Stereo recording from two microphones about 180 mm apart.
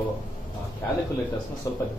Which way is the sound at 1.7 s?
20° left (ahead or behind).